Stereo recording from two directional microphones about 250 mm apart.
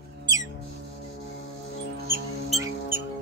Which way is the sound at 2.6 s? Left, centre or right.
Centre.